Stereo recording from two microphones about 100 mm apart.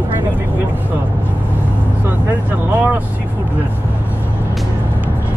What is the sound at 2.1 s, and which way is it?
Speech, 20° right (ahead or behind).